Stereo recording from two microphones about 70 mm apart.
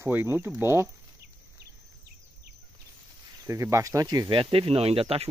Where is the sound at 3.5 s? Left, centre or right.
Right.